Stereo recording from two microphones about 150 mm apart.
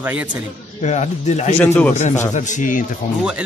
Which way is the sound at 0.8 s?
50° left (ahead or behind).